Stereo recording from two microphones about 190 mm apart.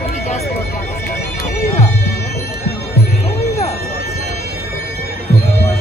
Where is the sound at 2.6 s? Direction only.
60° left (ahead or behind).